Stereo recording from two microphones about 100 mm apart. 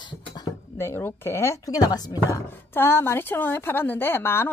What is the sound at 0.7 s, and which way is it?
A woman's voice, 25° left (ahead or behind).